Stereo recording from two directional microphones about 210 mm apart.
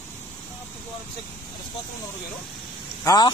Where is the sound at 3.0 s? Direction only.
20° left (ahead or behind).